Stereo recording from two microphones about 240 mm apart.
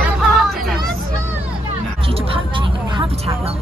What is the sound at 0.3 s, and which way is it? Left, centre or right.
Music, centre.